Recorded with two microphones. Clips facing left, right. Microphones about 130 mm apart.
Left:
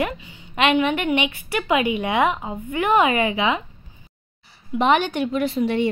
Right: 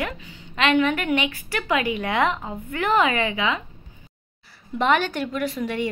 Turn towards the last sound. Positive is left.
turn(degrees=25)  # may be behind; listen again after turning